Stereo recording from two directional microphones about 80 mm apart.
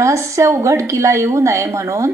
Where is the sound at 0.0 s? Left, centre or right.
Right.